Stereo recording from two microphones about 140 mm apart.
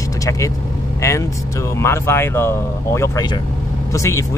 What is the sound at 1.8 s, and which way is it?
Speech, 20° left (ahead or behind).